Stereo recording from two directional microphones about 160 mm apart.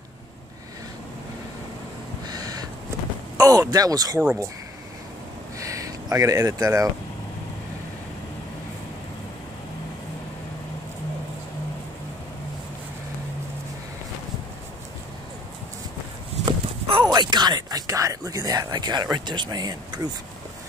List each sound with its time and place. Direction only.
2.2 s owl: 25° right (ahead or behind)
3.3 s speech: 25° right (ahead or behind)
5.6 s a sound: 20° right (ahead or behind)
16.4 s speech: 35° right (ahead or behind)